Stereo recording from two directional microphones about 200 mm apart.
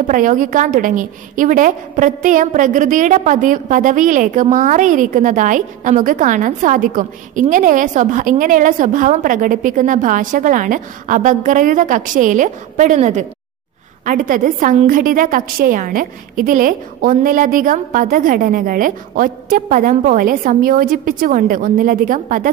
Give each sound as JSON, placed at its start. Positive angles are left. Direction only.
{"t": 0.0, "sound": "a woman's voice", "side_deg": -40}